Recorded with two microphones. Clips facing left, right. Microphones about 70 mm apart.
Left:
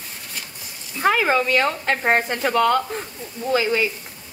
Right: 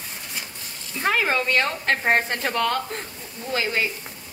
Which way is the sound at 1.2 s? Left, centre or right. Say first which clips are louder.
Left 3 dB; centre.